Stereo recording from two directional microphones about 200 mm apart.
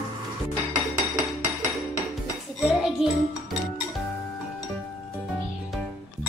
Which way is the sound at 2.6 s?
Centre (ahead or behind).